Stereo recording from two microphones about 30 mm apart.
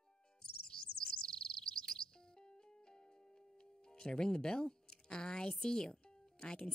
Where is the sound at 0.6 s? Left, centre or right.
Left.